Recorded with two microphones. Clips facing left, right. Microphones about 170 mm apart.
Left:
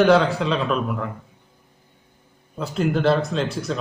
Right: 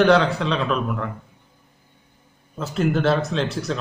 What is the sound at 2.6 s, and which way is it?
Speech, centre (ahead or behind).